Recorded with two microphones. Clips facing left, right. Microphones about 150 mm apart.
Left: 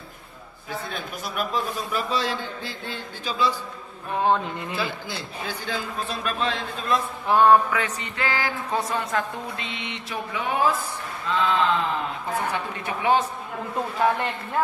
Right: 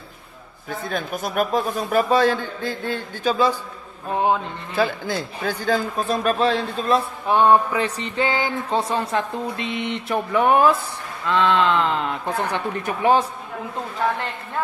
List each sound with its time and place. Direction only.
0.7 s a man's voice: 45° right (ahead or behind)
4.7 s a man's voice: 45° right (ahead or behind)
7.2 s a sound: 20° right (ahead or behind)
9.6 s a sound: 45° right (ahead or behind); by 10.7 s 60° right (ahead or behind)
11.2 s speech: 80° right
12.8 s a man's voice: 40° right (ahead or behind)